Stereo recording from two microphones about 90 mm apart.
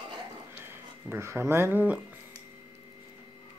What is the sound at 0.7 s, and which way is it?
Speech, 25° right (ahead or behind).